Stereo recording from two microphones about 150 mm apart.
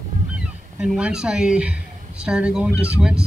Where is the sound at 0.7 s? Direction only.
5° right (ahead or behind).